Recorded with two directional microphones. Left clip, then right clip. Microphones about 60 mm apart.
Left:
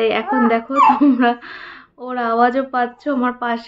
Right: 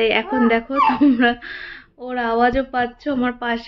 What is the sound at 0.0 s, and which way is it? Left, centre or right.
Speech, centre.